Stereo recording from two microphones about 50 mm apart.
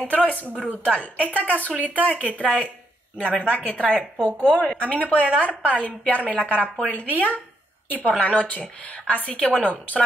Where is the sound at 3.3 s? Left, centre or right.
Left.